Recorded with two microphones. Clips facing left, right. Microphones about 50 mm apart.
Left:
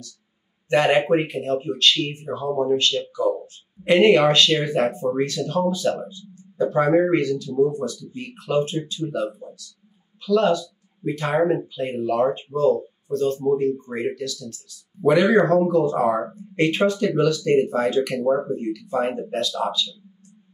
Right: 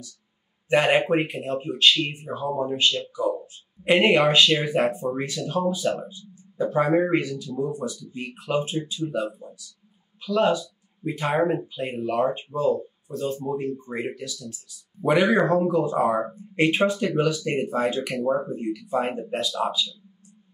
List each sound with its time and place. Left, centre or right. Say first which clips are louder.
0.7 s speech: left 2 dB; centre